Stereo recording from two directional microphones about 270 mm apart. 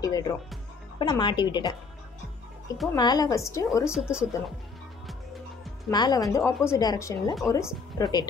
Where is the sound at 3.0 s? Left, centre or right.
Centre.